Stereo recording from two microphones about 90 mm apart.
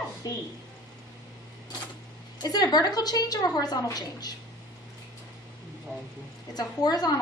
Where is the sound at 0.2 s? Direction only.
40° left (ahead or behind).